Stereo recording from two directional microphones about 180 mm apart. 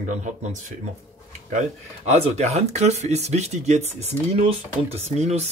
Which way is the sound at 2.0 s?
40° right (ahead or behind).